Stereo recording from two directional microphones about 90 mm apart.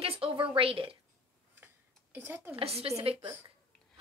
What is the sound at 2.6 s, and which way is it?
Speech, 90° right.